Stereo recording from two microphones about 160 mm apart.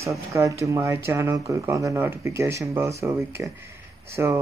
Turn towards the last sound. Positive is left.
turn(degrees=-15)  # may be behind; listen again after turning